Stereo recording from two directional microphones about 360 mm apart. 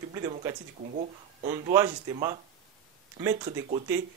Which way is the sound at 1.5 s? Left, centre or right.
Centre.